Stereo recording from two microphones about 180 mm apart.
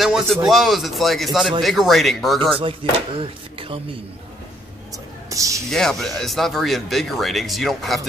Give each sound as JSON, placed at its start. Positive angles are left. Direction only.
{"t": 0.0, "sound": "speech", "side_deg": 0}
{"t": 2.6, "sound": "speech", "side_deg": -30}
{"t": 4.9, "sound": "a sound", "side_deg": -20}
{"t": 5.7, "sound": "speech", "side_deg": 5}